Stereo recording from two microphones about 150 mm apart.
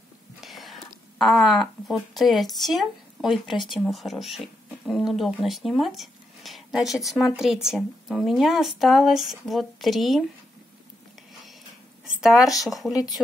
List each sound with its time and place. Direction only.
0.4 s speech: centre (ahead or behind)
12.2 s speech: centre (ahead or behind)
12.9 s speech: 25° left (ahead or behind)